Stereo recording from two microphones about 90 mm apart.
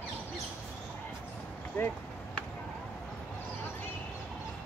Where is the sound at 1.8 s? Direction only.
25° left (ahead or behind).